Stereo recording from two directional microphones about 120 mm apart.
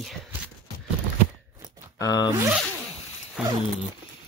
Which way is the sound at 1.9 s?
30° left (ahead or behind).